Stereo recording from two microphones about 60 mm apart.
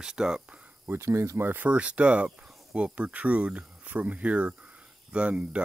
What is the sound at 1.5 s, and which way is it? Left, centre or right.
Speech, right.